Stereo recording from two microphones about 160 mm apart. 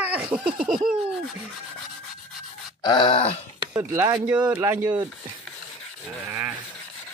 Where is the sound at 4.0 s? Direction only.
10° right (ahead or behind).